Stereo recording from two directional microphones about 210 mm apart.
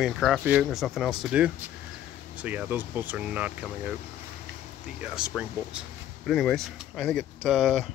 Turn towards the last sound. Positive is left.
turn(degrees=0)  # may be behind; listen again after turning